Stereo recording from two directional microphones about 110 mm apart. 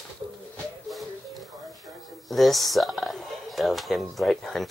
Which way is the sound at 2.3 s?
Centre (ahead or behind).